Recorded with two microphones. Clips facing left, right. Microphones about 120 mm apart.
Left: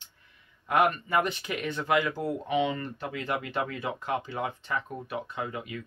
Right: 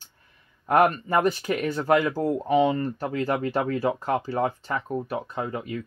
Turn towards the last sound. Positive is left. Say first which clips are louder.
# right 5 dB
turn(degrees=-40)  # may be behind; listen again after turning